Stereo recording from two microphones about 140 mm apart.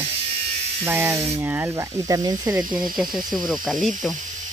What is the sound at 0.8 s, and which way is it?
Speech, 15° right (ahead or behind).